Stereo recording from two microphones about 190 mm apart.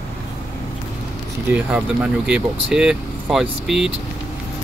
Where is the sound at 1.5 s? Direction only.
5° right (ahead or behind).